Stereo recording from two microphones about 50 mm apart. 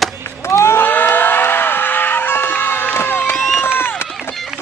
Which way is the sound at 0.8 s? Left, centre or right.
Left.